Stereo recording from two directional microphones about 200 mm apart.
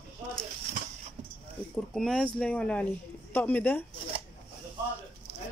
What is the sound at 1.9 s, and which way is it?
A man's voice, centre (ahead or behind).